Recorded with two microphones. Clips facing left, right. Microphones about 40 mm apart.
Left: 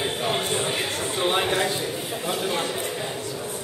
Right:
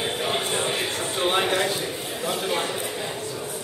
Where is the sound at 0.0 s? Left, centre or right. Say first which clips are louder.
Even; centre.